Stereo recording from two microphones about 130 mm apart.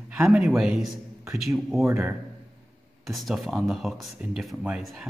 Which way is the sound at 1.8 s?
20° right (ahead or behind).